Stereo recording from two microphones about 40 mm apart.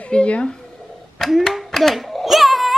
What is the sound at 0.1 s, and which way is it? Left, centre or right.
Speech, left.